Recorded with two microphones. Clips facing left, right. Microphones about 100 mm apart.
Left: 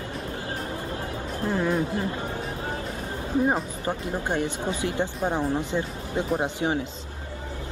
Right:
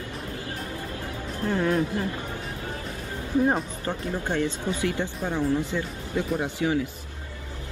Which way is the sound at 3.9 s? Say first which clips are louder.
Left 2 dB; 15° left (ahead or behind).